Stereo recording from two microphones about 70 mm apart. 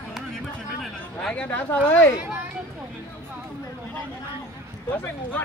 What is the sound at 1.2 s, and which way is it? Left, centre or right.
Speech, centre.